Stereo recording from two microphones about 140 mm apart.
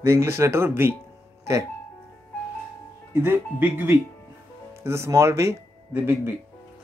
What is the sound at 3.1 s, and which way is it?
Speech, 15° right (ahead or behind).